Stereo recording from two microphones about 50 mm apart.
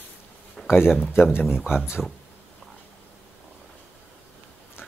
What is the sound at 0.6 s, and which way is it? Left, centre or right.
Speech, centre.